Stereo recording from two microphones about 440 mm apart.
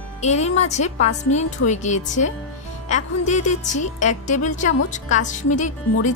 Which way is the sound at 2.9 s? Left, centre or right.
Centre.